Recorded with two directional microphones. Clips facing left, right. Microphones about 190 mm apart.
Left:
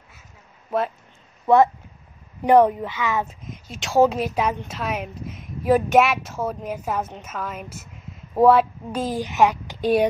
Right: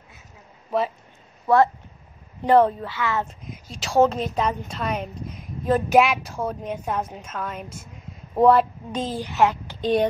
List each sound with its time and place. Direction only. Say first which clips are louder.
0.7 s speech: even; centre (ahead or behind)
2.4 s speech: left 2 dB; 15° left (ahead or behind)
3.4 s a woman's voice: left 1 dB; centre (ahead or behind)